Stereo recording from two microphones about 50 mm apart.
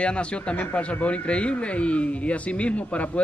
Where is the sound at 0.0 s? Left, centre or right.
Left.